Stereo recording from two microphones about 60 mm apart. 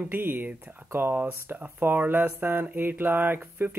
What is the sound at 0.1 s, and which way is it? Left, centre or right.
Speech, right.